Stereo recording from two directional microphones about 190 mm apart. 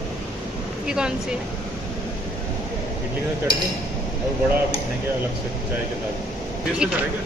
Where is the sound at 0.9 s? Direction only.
5° right (ahead or behind).